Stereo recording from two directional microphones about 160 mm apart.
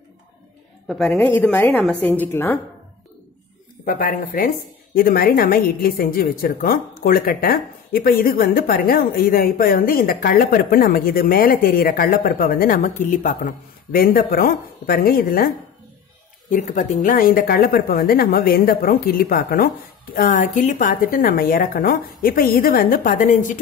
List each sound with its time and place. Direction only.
0.8 s a man's voice: 5° left (ahead or behind)
3.8 s a woman's voice: 60° left (ahead or behind)
16.4 s a woman's voice: 55° left (ahead or behind)